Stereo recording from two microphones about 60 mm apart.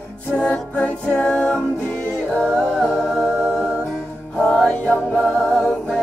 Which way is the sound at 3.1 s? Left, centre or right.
Centre.